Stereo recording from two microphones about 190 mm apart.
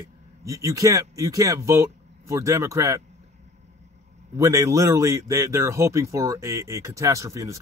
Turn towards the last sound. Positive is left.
turn(degrees=-15)  # may be behind; listen again after turning